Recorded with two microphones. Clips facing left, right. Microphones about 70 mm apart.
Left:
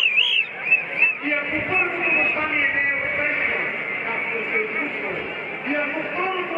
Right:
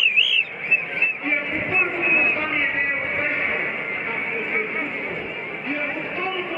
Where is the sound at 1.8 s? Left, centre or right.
Left.